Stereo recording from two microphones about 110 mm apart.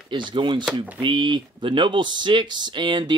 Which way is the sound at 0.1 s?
45° right (ahead or behind).